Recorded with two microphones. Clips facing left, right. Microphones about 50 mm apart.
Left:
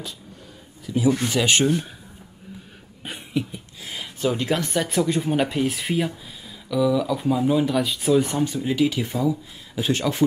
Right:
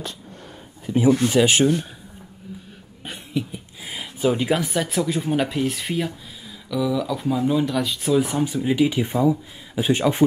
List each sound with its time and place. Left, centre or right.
0.8 s speech: right
1.3 s speech: centre
3.0 s a sound: centre
3.8 s speech: centre